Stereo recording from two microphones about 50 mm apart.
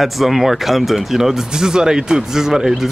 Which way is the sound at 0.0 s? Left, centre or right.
Centre.